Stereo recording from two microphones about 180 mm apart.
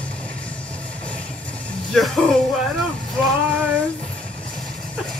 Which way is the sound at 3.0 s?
Centre (ahead or behind).